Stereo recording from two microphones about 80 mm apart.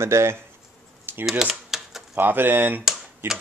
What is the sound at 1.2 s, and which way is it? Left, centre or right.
Typewriter, centre.